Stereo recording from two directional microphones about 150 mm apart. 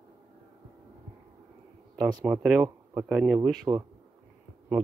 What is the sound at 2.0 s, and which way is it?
Speech, 25° right (ahead or behind).